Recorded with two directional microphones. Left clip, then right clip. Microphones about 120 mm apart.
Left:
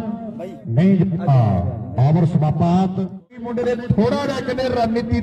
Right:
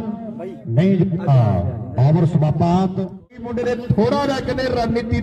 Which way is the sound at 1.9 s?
30° right (ahead or behind).